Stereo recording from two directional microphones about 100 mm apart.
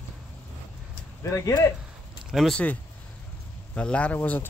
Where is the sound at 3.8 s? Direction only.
15° left (ahead or behind).